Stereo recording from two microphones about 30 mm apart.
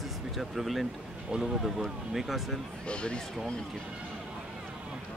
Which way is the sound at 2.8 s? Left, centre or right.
Left.